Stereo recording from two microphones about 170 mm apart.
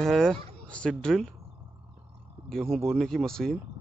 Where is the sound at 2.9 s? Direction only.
Centre (ahead or behind).